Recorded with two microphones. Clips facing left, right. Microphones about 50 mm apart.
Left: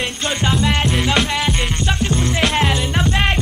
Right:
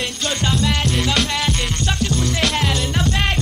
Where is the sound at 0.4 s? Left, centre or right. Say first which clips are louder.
Left 3 dB; centre.